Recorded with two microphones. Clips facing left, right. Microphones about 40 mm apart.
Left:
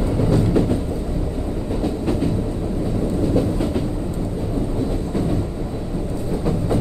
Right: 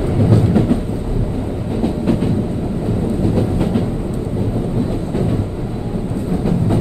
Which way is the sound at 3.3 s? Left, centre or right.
Right.